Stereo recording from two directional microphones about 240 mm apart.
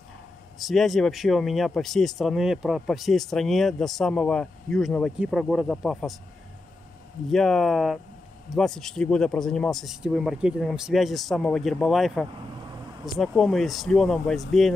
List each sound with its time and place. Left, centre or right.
0.6 s speech: centre
7.2 s speech: centre